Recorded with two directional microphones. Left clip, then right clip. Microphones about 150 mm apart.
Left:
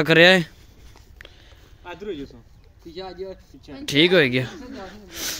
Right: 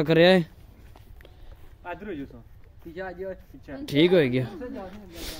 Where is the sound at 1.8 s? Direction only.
75° right (ahead or behind).